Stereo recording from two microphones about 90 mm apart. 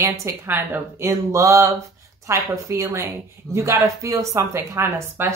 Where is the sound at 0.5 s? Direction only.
20° right (ahead or behind).